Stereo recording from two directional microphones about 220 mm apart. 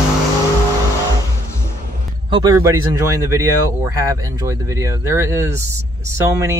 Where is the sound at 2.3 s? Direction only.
15° right (ahead or behind).